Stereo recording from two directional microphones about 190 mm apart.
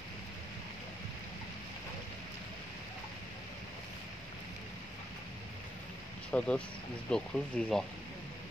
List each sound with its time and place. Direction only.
6.3 s speech: 5° left (ahead or behind)